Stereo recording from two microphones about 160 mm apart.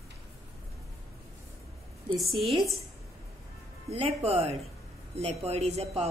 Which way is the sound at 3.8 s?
40° right (ahead or behind).